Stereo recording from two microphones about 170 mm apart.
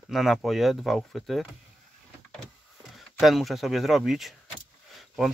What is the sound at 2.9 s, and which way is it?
Speech, centre (ahead or behind).